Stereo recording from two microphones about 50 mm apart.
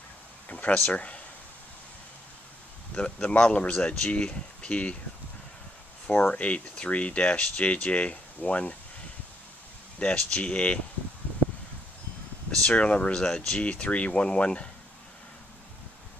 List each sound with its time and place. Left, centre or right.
0.5 s a sound: left
0.8 s speech: left
2.9 s speech: left
6.0 s speech: left
9.9 s speech: left
12.4 s speech: left